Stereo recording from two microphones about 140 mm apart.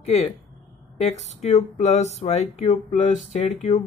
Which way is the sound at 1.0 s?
50° left (ahead or behind).